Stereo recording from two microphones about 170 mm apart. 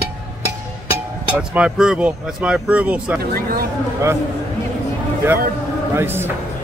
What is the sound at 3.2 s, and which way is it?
Speech, 60° right (ahead or behind).